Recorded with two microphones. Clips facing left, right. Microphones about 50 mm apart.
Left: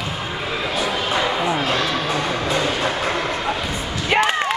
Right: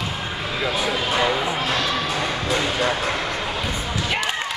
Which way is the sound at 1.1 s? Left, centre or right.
Centre.